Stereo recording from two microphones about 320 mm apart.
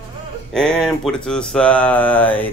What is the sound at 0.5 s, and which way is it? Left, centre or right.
Speech, centre.